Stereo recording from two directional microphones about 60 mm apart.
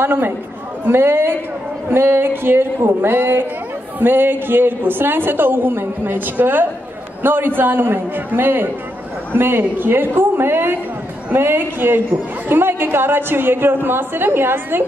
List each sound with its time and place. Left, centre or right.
0.0 s a woman's voice: right